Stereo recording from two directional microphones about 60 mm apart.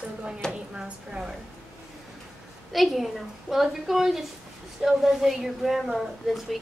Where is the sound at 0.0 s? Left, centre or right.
Centre.